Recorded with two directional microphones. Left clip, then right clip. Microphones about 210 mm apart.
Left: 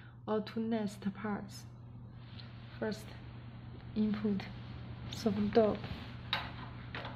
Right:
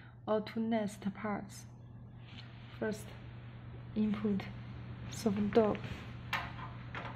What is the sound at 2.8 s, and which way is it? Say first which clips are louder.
A woman's voice: right 1 dB; 10° right (ahead or behind).